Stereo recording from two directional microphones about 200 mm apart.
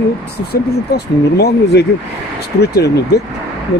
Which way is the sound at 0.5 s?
55° left (ahead or behind).